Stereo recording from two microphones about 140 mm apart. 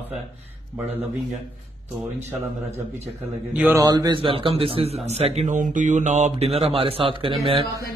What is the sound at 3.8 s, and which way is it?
Speech, 25° right (ahead or behind).